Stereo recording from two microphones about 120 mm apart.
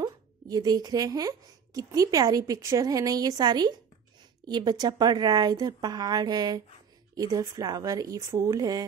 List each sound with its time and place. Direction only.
0.0 s a woman's voice: 30° right (ahead or behind)